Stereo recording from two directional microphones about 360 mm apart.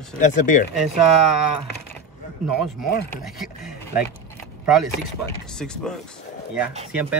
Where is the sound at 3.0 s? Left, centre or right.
Centre.